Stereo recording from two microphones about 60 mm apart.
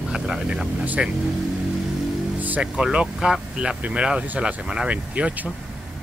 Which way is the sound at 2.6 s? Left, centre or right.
Centre.